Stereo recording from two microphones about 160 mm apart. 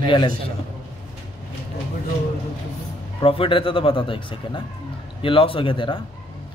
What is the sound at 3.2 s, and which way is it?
A man's voice, 35° left (ahead or behind).